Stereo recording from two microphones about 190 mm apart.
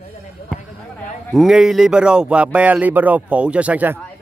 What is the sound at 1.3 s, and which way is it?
Speech, centre (ahead or behind).